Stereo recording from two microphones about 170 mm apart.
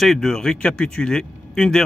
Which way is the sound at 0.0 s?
Centre (ahead or behind).